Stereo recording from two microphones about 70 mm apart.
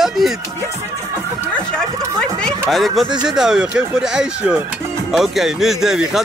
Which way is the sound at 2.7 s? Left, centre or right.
Centre.